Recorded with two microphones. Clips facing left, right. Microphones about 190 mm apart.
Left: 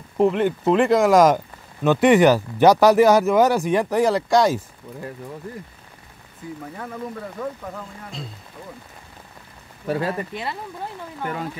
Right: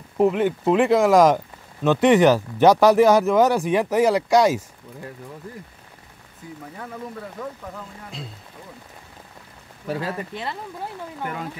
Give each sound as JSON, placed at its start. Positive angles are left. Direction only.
{"t": 0.2, "sound": "speech", "side_deg": -5}
{"t": 9.8, "sound": "speech", "side_deg": 55}
{"t": 10.3, "sound": "speech", "side_deg": 10}